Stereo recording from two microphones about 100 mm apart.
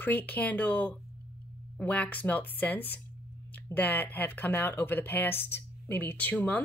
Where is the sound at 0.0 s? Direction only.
20° left (ahead or behind).